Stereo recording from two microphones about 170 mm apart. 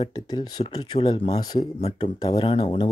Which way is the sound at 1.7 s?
35° left (ahead or behind).